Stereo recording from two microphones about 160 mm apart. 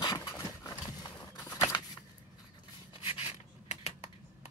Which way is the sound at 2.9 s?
35° left (ahead or behind).